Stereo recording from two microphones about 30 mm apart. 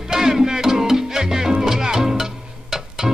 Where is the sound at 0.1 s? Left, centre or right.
Centre.